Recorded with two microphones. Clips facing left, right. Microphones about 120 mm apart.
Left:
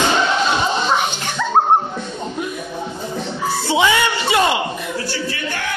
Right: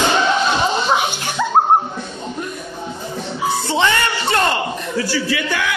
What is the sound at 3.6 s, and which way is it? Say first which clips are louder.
Music: left 4 dB; 10° left (ahead or behind).